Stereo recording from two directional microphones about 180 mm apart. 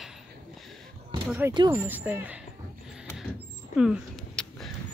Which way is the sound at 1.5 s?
25° right (ahead or behind).